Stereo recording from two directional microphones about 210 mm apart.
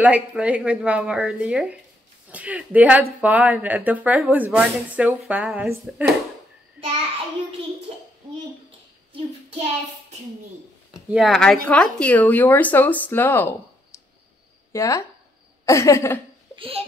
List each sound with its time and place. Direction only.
0.0 s a woman's voice: 5° right (ahead or behind)
10.9 s speech: centre (ahead or behind); by 16.2 s 15° left (ahead or behind)
16.5 s speech: 25° right (ahead or behind)